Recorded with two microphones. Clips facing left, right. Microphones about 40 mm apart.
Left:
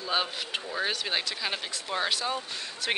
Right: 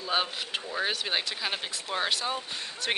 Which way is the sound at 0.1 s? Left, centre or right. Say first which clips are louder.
Even; centre.